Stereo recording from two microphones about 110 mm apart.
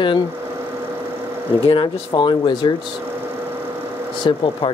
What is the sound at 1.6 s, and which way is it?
Speech, 45° left (ahead or behind).